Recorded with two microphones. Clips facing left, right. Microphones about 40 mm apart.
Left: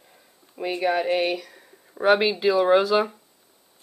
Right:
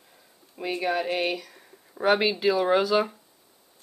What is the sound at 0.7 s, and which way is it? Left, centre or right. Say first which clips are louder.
Speech: left 4 dB; centre.